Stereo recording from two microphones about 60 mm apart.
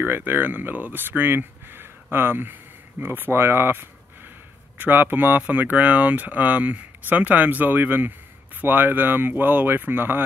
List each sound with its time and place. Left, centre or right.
0.0 s speech: right